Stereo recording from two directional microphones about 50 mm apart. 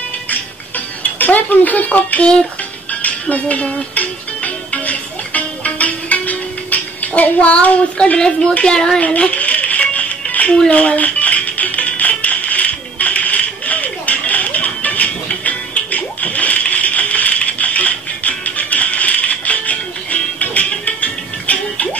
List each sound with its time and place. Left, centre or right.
1.1 s speech: left
2.9 s music: left
8.2 s speech: centre
9.0 s music: left